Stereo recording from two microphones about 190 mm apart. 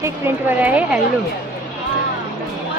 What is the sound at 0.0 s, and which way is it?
A woman's voice, 10° right (ahead or behind).